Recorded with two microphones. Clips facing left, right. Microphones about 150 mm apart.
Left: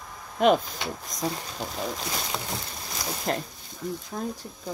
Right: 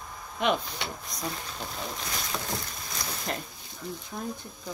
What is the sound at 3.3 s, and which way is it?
Speech, 40° left (ahead or behind).